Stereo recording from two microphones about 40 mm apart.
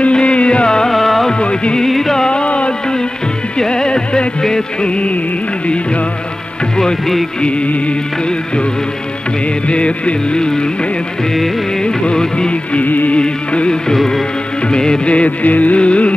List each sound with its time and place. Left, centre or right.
0.1 s music: left
0.7 s music: centre
0.9 s music: centre
1.4 s music: left
1.9 s music: centre
2.2 s music: left
3.5 s music: centre
9.7 s music: left
11.8 s music: left
12.8 s music: left
13.1 s music: left
13.9 s music: centre
14.7 s music: left
15.1 s music: left